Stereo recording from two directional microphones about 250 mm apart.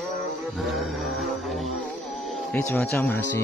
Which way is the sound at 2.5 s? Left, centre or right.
Centre.